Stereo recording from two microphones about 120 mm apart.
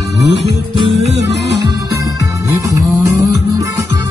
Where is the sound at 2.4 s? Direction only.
30° right (ahead or behind).